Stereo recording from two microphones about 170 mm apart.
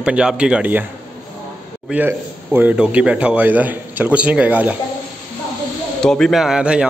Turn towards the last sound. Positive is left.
turn(degrees=-5)  # may be behind; listen again after turning